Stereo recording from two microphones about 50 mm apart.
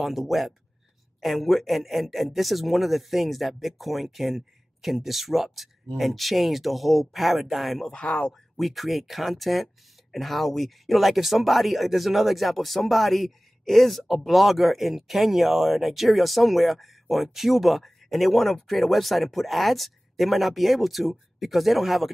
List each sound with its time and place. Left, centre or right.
0.0 s speech: centre
7.9 s speech: left
8.3 s speech: centre